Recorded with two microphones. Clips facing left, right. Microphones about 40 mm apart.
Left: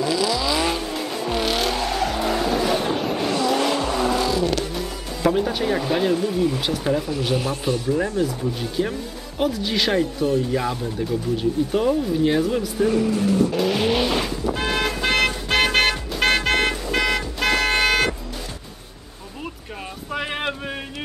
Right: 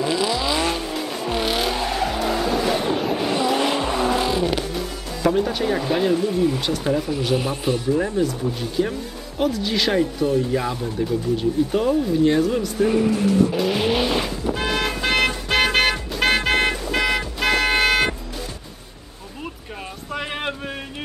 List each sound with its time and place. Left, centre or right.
0.0 s vehicle: right
0.6 s vehicle: centre
3.3 s vehicle: centre
5.2 s speech: centre
8.2 s speech: centre
12.8 s speech: centre
13.5 s speech: centre
14.4 s toot: centre
20.1 s a sound: centre